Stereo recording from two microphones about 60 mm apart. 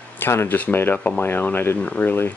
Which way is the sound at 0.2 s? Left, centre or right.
Left.